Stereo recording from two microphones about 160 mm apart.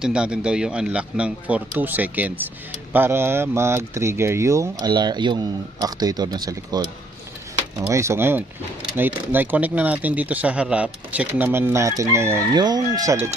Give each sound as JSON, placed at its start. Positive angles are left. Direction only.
{"t": 0.0, "sound": "speech", "side_deg": -5}
{"t": 7.9, "sound": "speech", "side_deg": -15}